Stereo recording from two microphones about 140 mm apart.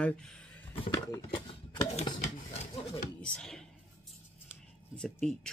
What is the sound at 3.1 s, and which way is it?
Speech, 5° left (ahead or behind).